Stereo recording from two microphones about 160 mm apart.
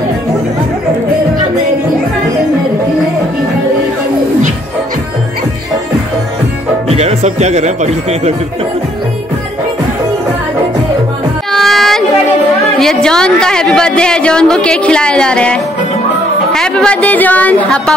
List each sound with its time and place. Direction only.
6.9 s speech: 40° right (ahead or behind)
11.5 s child singing: centre (ahead or behind)
12.7 s a woman's voice: 5° left (ahead or behind)